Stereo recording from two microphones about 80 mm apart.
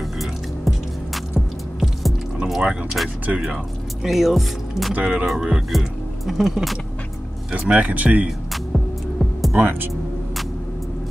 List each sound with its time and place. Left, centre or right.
0.2 s music: centre
3.3 s speech: centre
4.9 s speech: centre
7.5 s speech: centre
8.7 s music: centre